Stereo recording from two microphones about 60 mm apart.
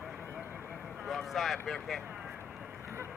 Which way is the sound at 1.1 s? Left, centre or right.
Centre.